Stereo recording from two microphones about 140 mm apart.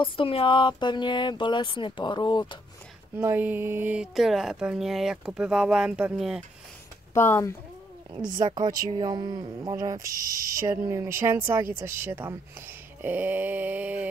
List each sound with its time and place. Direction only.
0.0 s speech: 40° left (ahead or behind)
3.2 s speech: 15° right (ahead or behind)
7.2 s speech: 15° left (ahead or behind)
8.4 s a sound: 30° right (ahead or behind)
10.0 s speech: 90° right
10.7 s speech: 20° right (ahead or behind)